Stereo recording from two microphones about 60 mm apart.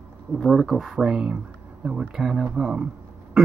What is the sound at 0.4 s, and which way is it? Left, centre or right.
Speech, centre.